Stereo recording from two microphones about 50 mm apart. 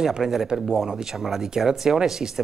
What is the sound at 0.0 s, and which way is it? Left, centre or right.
Speech, centre.